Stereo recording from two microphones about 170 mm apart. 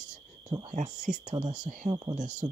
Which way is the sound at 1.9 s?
30° right (ahead or behind).